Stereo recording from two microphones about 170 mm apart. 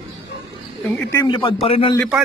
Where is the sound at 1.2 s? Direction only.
30° left (ahead or behind).